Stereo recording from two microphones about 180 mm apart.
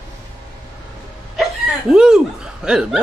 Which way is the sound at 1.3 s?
Centre (ahead or behind).